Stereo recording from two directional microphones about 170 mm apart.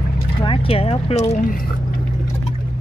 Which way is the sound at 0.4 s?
30° left (ahead or behind).